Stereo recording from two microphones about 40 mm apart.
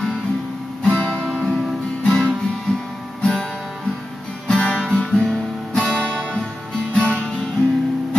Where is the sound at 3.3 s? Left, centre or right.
Centre.